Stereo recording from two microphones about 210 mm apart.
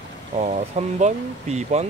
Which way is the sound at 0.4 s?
35° right (ahead or behind).